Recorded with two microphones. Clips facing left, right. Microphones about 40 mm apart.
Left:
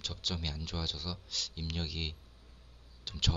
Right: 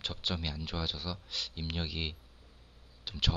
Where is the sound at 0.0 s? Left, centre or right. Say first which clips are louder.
Right 2 dB; right.